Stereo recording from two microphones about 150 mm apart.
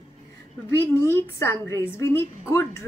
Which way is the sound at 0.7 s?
15° left (ahead or behind).